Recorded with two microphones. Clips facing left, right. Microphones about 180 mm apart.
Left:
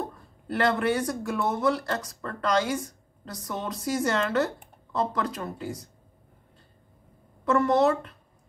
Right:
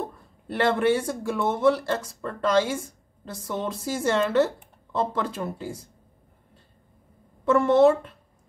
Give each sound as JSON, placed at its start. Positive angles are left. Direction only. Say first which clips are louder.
{"t": 0.6, "sound": "speech", "louder": "right 3 dB", "side_deg": -25}
{"t": 7.4, "sound": "speech", "louder": "right 4 dB", "side_deg": -25}